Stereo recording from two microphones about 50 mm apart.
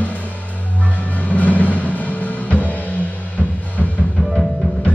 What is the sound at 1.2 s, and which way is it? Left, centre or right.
Vehicle, left.